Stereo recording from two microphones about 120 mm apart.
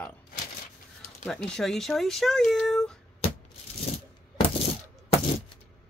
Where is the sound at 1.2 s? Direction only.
5° left (ahead or behind).